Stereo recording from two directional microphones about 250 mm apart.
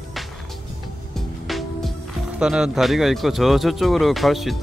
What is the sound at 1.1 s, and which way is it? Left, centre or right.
Music, centre.